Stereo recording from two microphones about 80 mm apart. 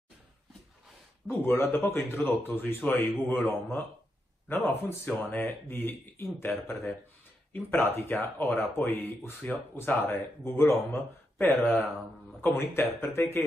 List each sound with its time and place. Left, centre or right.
1.4 s speech: left; by 3.5 s centre
4.5 s speech: left